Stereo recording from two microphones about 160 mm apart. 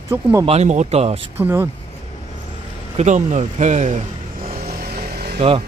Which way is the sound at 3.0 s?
45° right (ahead or behind).